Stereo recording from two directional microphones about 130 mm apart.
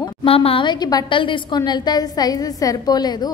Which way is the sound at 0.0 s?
45° left (ahead or behind).